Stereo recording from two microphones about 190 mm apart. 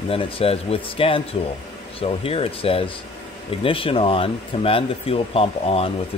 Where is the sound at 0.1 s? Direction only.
30° left (ahead or behind).